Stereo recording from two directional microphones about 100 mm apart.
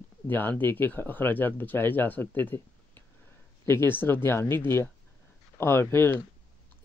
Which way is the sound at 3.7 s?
20° left (ahead or behind).